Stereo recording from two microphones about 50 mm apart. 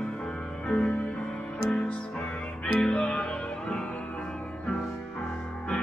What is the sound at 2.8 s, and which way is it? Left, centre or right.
Music, centre.